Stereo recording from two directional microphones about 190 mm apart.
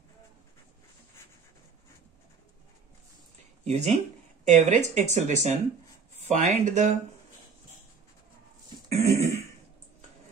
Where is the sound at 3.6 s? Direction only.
35° right (ahead or behind).